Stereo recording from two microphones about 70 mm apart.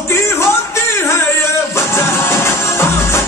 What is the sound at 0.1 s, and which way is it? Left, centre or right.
Music, left.